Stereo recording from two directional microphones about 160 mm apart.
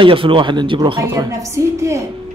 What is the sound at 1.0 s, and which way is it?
A woman's voice, 20° right (ahead or behind).